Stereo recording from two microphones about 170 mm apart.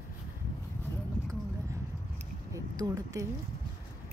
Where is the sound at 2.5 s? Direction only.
20° right (ahead or behind).